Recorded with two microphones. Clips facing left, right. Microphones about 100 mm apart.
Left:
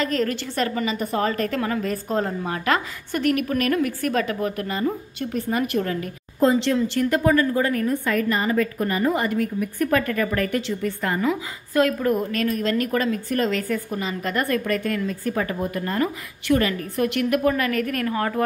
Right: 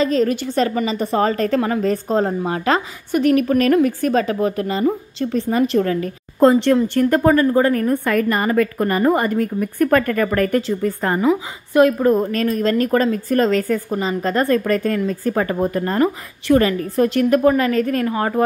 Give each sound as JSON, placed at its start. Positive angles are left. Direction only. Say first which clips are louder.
{"t": 0.0, "sound": "a woman's voice", "louder": "right 6 dB", "side_deg": -20}
{"t": 3.3, "sound": "a woman's voice", "louder": "right 7 dB", "side_deg": -30}
{"t": 6.4, "sound": "a woman's voice", "louder": "right 6 dB", "side_deg": -55}
{"t": 11.7, "sound": "a woman's voice", "louder": "right 6 dB", "side_deg": -25}
{"t": 12.2, "sound": "speech", "louder": "right 5 dB", "side_deg": -35}